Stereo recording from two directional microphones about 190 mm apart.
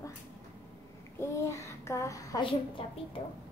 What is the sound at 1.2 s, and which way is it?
A child's voice, 15° left (ahead or behind).